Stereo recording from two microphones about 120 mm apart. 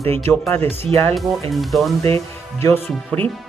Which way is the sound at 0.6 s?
55° right (ahead or behind).